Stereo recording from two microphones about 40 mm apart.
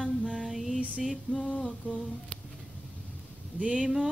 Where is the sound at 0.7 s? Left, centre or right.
Right.